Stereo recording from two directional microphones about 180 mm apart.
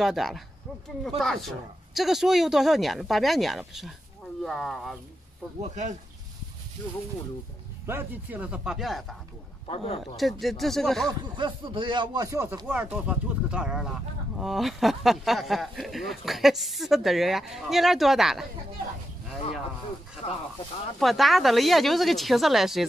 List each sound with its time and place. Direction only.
0.0 s speech: centre (ahead or behind)
5.6 s speech: 40° right (ahead or behind)
7.8 s speech: 10° right (ahead or behind)
9.7 s speech: 30° left (ahead or behind)
10.1 s speech: centre (ahead or behind)
11.1 s speech: 25° right (ahead or behind); by 18.5 s centre (ahead or behind)
20.2 s speech: 35° left (ahead or behind)
21.0 s speech: centre (ahead or behind)